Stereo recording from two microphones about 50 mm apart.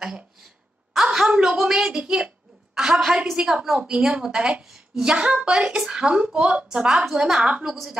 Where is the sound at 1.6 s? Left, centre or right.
Centre.